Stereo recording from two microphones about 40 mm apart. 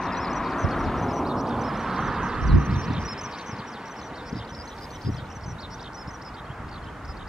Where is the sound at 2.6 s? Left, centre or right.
Centre.